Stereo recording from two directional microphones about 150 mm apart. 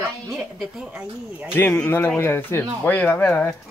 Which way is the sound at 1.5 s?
15° left (ahead or behind).